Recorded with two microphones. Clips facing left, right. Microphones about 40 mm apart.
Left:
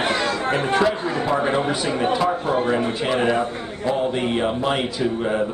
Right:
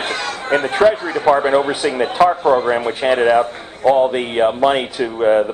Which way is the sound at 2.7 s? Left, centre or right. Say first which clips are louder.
Right 5 dB; right.